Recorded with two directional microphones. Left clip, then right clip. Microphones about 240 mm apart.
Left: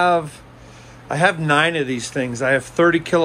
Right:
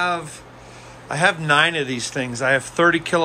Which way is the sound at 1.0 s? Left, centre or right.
Centre.